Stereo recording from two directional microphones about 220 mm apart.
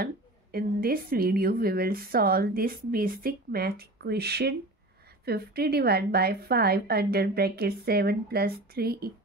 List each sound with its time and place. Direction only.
0.0 s speech: 45° right (ahead or behind)